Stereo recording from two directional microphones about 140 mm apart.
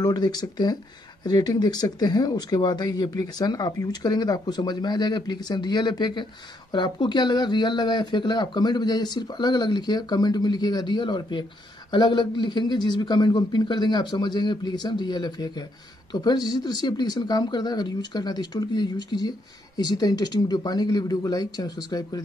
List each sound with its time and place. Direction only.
0.0 s speech: 30° left (ahead or behind)